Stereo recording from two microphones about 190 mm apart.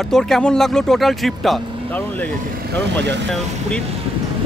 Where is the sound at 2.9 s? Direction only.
65° right (ahead or behind).